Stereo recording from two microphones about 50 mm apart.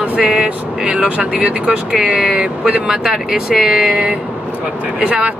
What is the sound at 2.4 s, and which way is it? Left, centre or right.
Speech, right.